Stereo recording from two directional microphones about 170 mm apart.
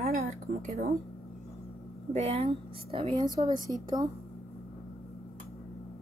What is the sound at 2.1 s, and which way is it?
A woman's voice, 40° right (ahead or behind).